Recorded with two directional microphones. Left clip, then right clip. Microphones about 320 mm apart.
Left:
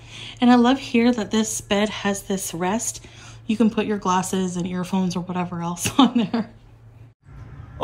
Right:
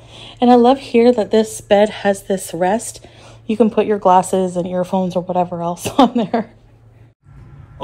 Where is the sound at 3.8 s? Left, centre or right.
Centre.